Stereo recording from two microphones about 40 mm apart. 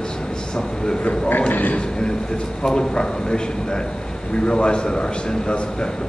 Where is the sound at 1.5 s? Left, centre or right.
Left.